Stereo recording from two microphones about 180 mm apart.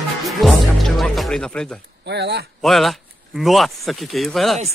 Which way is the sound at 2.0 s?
70° right (ahead or behind).